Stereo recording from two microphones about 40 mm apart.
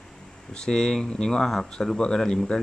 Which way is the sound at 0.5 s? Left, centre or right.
Left.